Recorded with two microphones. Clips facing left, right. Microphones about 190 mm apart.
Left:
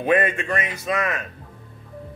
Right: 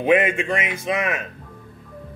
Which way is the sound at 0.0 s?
15° right (ahead or behind).